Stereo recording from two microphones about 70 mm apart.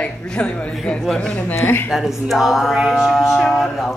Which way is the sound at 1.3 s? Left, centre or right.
Left.